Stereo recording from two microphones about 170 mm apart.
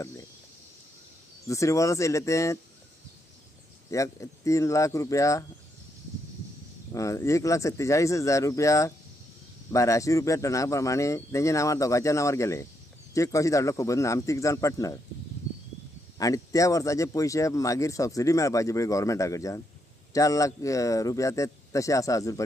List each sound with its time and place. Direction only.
1.5 s a man's voice: 20° left (ahead or behind)
3.9 s speech: 20° left (ahead or behind)
6.9 s a man's voice: 20° left (ahead or behind)
16.2 s speech: 20° left (ahead or behind)